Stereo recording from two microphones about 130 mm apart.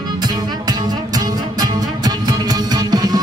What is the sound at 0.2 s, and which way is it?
Music, 30° right (ahead or behind).